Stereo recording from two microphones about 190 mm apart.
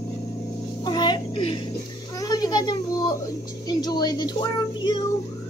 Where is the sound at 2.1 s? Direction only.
20° left (ahead or behind).